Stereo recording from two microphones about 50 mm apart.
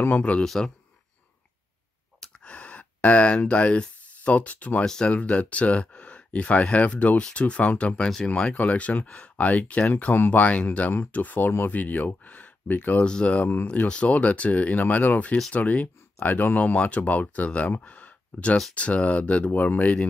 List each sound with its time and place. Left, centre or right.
0.1 s speech: left
0.4 s speech: centre
2.1 s sigh: left
3.4 s speech: left
10.1 s speech: left
10.4 s speech: left
13.0 s speech: left
13.8 s speech: left
17.8 s a sound: left
18.8 s speech: left